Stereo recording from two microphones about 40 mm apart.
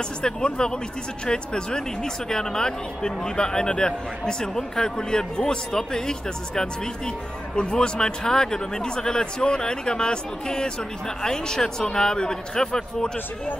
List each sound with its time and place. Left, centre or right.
0.2 s a man's voice: centre